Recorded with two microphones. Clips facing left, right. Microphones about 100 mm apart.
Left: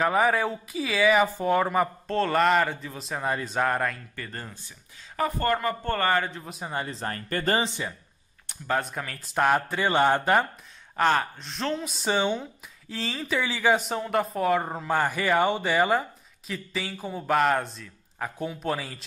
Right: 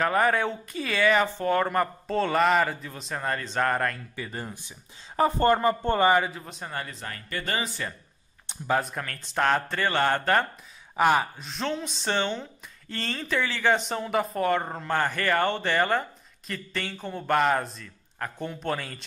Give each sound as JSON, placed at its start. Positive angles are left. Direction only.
{"t": 0.0, "sound": "speech", "side_deg": 5}
{"t": 4.1, "sound": "speech", "side_deg": -10}
{"t": 5.1, "sound": "speech", "side_deg": -25}
{"t": 6.3, "sound": "speech", "side_deg": 5}
{"t": 6.9, "sound": "speech", "side_deg": 40}
{"t": 8.6, "sound": "speech", "side_deg": 0}
{"t": 11.0, "sound": "speech", "side_deg": -10}